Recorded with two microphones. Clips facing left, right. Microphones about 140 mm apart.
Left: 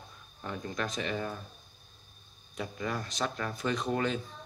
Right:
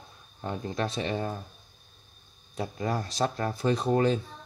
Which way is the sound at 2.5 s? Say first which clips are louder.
Right 5 dB; 35° right (ahead or behind).